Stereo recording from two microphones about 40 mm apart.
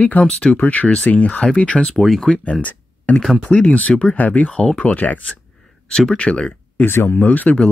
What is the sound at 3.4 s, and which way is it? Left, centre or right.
Speech, left.